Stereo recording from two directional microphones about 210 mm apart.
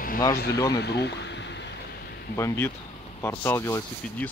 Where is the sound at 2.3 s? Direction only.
10° left (ahead or behind).